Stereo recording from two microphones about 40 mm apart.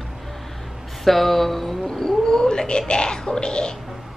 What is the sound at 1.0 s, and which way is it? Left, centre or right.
Speech, centre.